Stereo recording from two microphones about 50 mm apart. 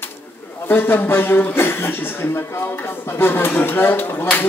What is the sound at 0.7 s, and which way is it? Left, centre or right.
A man's voice, left.